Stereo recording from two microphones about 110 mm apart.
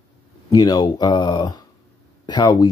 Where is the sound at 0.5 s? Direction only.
35° left (ahead or behind).